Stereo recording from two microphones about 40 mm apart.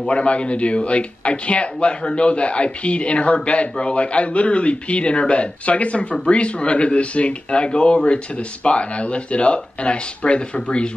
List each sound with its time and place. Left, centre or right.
0.1 s speech: left